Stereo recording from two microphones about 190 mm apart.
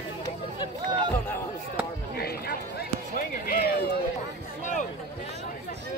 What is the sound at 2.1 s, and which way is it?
Run, 55° left (ahead or behind).